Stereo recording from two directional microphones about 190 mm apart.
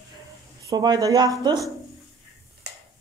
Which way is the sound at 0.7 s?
20° right (ahead or behind).